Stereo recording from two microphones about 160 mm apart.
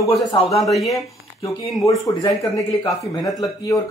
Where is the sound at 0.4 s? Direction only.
Centre (ahead or behind).